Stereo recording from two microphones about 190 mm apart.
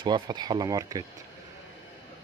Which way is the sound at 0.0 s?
25° right (ahead or behind).